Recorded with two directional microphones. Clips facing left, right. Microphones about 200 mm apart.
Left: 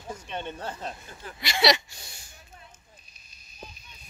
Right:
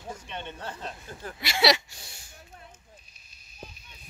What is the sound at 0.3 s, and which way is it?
Speech, 40° left (ahead or behind).